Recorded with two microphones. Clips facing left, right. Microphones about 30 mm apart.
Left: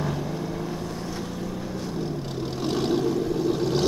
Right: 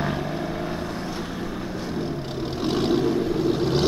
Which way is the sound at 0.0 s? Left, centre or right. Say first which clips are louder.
Right 2 dB; right.